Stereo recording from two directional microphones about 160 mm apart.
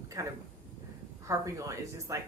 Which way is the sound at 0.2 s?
20° right (ahead or behind).